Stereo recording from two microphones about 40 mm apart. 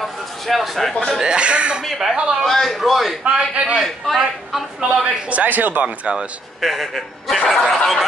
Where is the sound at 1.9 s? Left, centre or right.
Centre.